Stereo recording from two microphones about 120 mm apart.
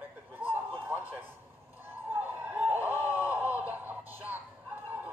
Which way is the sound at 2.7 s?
15° right (ahead or behind).